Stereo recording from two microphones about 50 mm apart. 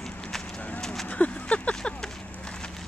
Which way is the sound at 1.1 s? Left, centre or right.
Left.